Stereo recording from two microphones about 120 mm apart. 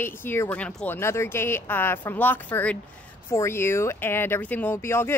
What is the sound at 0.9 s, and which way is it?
Speech, 20° left (ahead or behind).